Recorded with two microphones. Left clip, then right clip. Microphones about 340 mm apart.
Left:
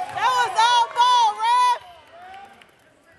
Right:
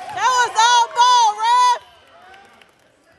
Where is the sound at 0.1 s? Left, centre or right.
Right.